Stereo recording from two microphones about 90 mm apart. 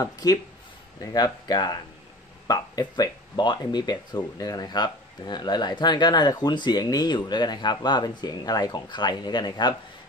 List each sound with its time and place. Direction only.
0.0 s speech: 45° left (ahead or behind)